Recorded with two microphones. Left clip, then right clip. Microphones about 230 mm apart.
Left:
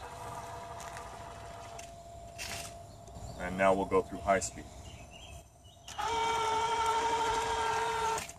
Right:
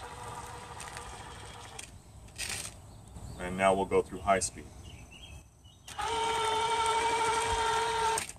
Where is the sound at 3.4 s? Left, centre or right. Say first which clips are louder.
Right 1 dB; right.